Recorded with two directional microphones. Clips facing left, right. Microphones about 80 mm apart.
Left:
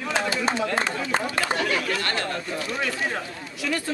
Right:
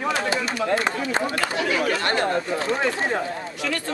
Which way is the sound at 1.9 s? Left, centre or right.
Right.